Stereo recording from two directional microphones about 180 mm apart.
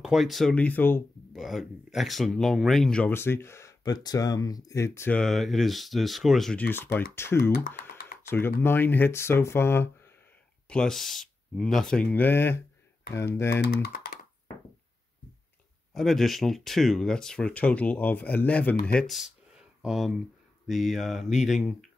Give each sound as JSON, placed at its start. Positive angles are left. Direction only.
{"t": 0.0, "sound": "speech", "side_deg": 0}
{"t": 1.3, "sound": "speech", "side_deg": 0}
{"t": 7.5, "sound": "speech", "side_deg": 50}
{"t": 8.2, "sound": "speech", "side_deg": 15}
{"t": 13.5, "sound": "speech", "side_deg": 65}
{"t": 13.8, "sound": "computer keyboard", "side_deg": 60}
{"t": 15.9, "sound": "speech", "side_deg": 0}